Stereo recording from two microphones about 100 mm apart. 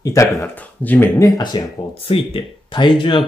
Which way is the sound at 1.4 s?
45° left (ahead or behind).